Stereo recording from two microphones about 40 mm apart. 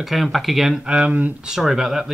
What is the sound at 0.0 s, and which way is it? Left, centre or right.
Speech, centre.